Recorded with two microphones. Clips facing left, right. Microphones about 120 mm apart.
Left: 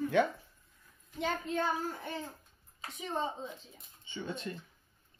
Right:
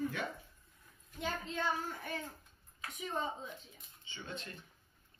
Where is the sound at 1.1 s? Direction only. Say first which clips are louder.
Left 6 dB; 65° left (ahead or behind).